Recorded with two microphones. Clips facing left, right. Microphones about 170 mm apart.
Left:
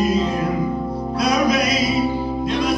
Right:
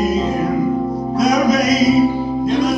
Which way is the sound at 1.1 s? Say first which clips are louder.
Right 4 dB; 45° right (ahead or behind).